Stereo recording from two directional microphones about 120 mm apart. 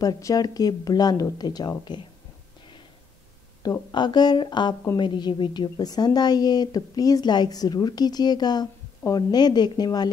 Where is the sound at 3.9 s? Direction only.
35° left (ahead or behind).